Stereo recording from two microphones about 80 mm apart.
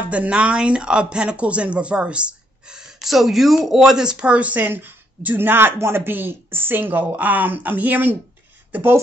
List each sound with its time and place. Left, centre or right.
0.1 s speech: centre